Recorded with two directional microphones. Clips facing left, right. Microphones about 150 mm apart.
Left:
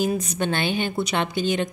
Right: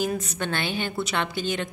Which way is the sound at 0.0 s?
20° left (ahead or behind).